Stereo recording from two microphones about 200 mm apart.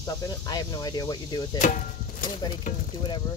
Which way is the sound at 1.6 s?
40° left (ahead or behind).